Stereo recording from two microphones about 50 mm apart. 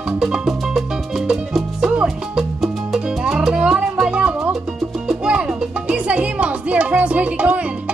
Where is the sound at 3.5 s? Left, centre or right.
Centre.